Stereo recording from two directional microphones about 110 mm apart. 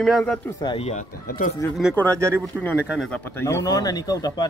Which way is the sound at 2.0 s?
25° right (ahead or behind).